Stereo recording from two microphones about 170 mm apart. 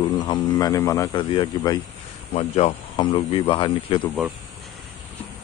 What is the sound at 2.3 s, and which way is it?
Speech, 35° left (ahead or behind).